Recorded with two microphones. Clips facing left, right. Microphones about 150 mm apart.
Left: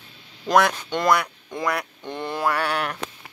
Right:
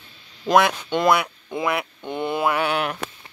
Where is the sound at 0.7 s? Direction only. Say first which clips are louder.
Right 2 dB; 5° right (ahead or behind).